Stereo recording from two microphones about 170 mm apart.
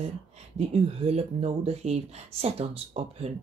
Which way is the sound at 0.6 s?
35° right (ahead or behind).